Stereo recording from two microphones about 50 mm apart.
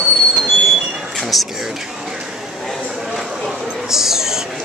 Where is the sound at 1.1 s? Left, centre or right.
Centre.